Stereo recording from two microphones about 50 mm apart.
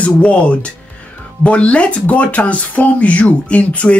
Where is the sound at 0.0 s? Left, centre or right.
Left.